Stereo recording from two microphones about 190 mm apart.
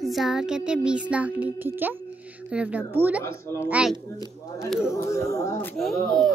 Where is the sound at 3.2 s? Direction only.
15° left (ahead or behind).